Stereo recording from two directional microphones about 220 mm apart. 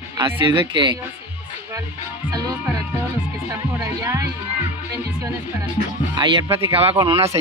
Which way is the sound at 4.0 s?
15° right (ahead or behind).